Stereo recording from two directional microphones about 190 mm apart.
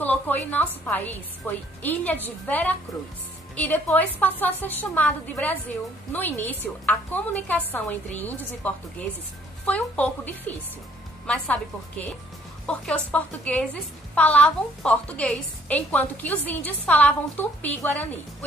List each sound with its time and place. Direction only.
0.0 s a woman's voice: 10° left (ahead or behind)
12.6 s a woman's voice: 5° left (ahead or behind)